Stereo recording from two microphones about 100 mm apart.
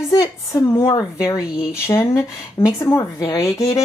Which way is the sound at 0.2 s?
35° left (ahead or behind).